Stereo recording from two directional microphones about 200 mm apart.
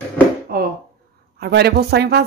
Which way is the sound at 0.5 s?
50° right (ahead or behind).